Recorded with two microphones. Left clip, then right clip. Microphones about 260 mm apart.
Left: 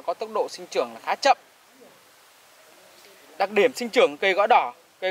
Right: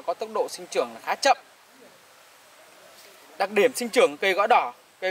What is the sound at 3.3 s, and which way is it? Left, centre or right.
Speech, centre.